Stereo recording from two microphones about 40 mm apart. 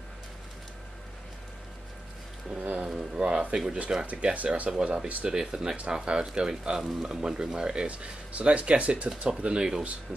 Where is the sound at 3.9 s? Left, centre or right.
Right.